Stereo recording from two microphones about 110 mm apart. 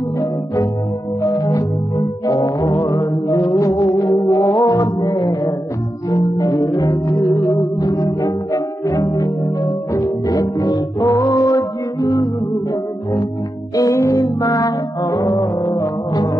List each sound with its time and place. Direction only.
1.2 s music: 30° left (ahead or behind)
13.7 s music: 30° left (ahead or behind)